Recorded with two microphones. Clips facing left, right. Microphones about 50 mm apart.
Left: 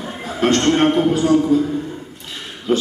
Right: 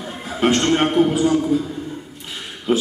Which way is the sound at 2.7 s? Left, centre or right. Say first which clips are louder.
Left 1 dB; centre.